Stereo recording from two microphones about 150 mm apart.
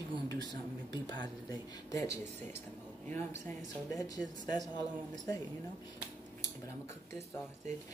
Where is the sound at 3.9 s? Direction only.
25° left (ahead or behind).